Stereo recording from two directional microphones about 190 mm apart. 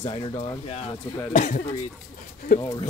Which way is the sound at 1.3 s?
40° left (ahead or behind).